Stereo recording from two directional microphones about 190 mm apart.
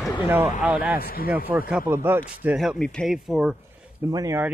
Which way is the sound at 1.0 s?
50° left (ahead or behind).